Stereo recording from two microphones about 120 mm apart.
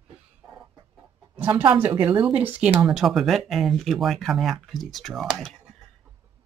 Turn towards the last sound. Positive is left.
turn(degrees=0)  # may be behind; listen again after turning